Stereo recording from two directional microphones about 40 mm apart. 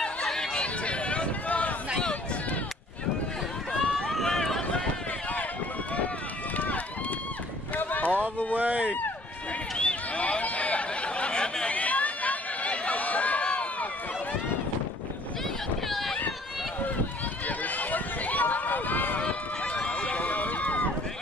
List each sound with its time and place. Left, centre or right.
0.0 s a sound: centre; by 1.8 s left
4.3 s run: centre
6.5 s run: left
8.5 s a sound: right
9.8 s a sound: left
11.7 s chatter: left
15.9 s run: centre
17.5 s run: left
19.2 s run: left